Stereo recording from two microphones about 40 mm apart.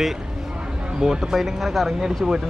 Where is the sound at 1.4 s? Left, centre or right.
Centre.